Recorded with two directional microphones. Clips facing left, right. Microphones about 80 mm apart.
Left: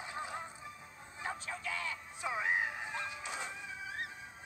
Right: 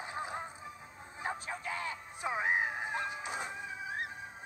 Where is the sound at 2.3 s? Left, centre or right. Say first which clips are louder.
Right 2 dB; right.